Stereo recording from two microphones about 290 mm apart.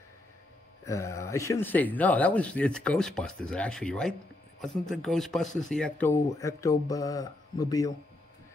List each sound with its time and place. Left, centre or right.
0.8 s speech: centre